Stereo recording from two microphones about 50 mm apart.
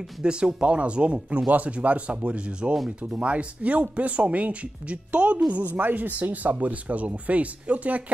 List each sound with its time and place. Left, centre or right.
0.2 s speech: centre